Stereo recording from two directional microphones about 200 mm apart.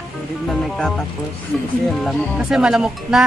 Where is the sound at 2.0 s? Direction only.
Centre (ahead or behind).